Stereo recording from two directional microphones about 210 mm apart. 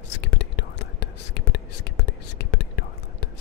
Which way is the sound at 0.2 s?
55° left (ahead or behind).